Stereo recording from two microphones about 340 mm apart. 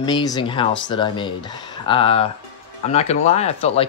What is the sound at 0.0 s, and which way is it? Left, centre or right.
Speech, centre.